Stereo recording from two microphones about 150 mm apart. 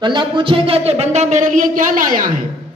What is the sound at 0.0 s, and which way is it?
Speech, 30° right (ahead or behind).